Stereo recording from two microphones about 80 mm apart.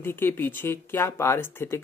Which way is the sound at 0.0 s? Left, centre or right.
Left.